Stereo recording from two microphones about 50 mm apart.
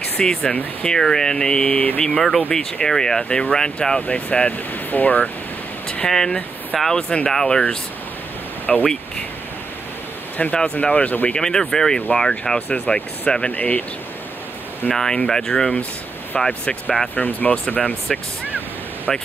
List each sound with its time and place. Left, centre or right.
0.2 s speech: centre
1.6 s speech: left
2.0 s speech: centre
4.1 s speech: left
6.0 s speech: centre
8.7 s speech: centre
10.5 s speech: left
11.3 s speech: centre
13.5 s speech: left
14.9 s speech: centre
17.1 s speech: left
19.1 s speech: centre